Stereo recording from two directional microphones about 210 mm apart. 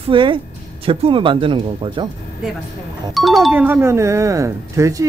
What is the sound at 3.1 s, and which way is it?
Speech, centre (ahead or behind).